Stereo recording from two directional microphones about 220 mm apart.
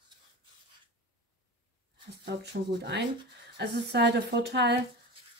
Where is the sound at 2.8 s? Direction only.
50° right (ahead or behind).